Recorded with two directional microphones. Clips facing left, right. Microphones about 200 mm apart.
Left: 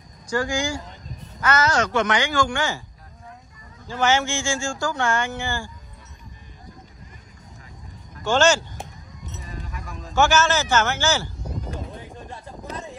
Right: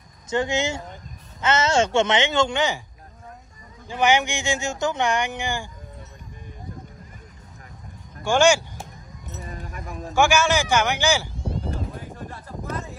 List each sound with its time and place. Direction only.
0.3 s speech: 25° right (ahead or behind)
3.8 s speech: 15° right (ahead or behind)
8.2 s speech: 10° right (ahead or behind)
9.4 s sheep: 50° right (ahead or behind)
10.1 s speech: 10° right (ahead or behind)
11.3 s a sound: 30° right (ahead or behind)